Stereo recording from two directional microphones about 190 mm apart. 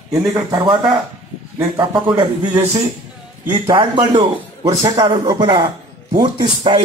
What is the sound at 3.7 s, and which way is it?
A man's voice, 25° right (ahead or behind).